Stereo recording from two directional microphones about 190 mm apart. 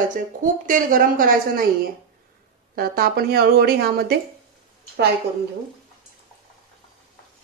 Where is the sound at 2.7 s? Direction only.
50° right (ahead or behind).